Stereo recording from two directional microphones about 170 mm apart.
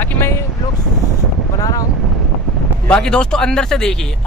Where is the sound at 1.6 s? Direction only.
20° left (ahead or behind).